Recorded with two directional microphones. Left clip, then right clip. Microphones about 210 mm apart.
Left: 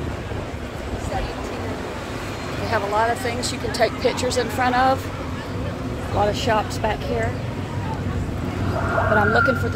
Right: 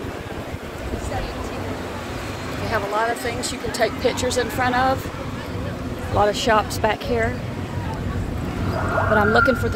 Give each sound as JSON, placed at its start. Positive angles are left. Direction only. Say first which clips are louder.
{"t": 2.7, "sound": "speech", "louder": "left 2 dB", "side_deg": 0}
{"t": 6.1, "sound": "speech", "louder": "right 3 dB", "side_deg": -20}
{"t": 9.1, "sound": "speech", "louder": "right 2 dB", "side_deg": -15}